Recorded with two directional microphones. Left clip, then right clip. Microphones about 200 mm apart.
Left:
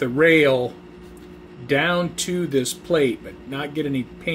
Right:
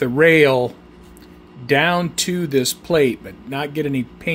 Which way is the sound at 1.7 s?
40° right (ahead or behind).